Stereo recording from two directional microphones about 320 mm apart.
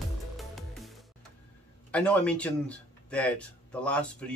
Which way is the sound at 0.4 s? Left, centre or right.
Centre.